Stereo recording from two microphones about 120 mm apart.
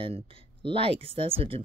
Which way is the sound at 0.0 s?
50° right (ahead or behind).